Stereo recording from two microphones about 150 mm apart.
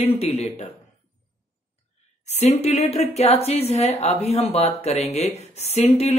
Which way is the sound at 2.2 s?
50° left (ahead or behind).